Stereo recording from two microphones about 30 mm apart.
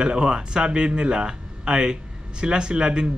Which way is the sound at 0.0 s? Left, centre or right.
Right.